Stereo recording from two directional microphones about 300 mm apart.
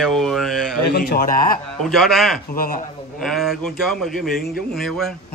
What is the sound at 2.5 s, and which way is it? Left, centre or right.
Speech, left.